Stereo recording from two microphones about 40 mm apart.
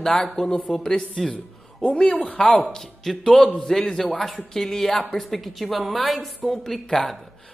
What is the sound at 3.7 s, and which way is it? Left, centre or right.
A man's voice, centre.